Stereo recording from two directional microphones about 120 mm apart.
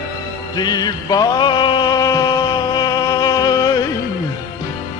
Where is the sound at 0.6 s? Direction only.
35° left (ahead or behind).